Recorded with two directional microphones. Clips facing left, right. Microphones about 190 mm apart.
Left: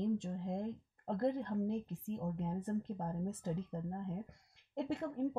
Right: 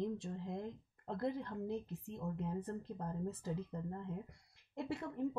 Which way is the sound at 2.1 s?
25° left (ahead or behind).